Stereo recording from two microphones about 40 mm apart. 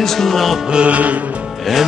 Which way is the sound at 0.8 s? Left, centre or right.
Right.